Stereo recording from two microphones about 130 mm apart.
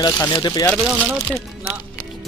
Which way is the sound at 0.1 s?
20° left (ahead or behind).